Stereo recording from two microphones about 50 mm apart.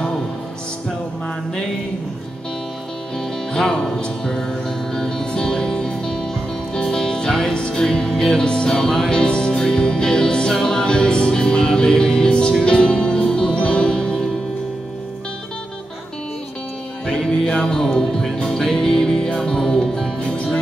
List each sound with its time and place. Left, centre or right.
3.2 s music: centre
17.0 s music: centre